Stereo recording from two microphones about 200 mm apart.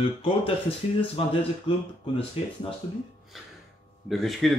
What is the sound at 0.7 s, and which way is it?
Speech, 30° left (ahead or behind).